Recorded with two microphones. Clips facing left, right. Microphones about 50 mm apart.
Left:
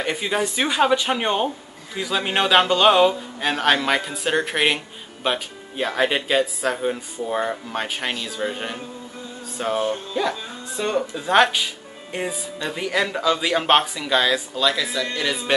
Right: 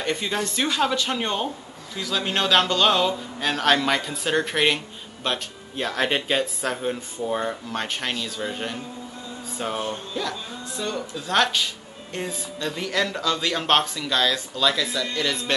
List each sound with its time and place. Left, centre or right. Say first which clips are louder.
0.0 s speech: left 3 dB; centre